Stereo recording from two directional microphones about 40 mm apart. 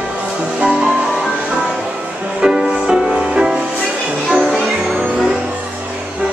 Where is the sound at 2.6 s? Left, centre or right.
Centre.